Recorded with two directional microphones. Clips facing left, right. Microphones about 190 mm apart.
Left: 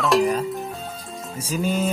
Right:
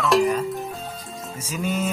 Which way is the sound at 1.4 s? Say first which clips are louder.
Left 3 dB; 30° left (ahead or behind).